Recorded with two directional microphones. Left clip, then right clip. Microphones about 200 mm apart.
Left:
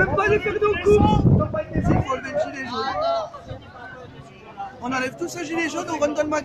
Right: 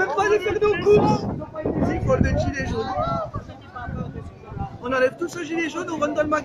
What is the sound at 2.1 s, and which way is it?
Speech, 50° left (ahead or behind).